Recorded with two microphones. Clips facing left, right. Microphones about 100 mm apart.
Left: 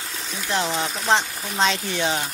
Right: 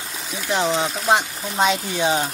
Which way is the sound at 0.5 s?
15° right (ahead or behind).